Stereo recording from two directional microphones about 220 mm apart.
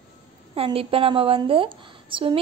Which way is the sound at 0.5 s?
25° right (ahead or behind).